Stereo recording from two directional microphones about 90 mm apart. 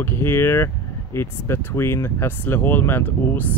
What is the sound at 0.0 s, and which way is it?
Speech, 25° left (ahead or behind).